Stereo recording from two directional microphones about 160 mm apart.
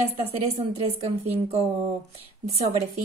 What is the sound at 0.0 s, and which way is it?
Speech, 40° right (ahead or behind).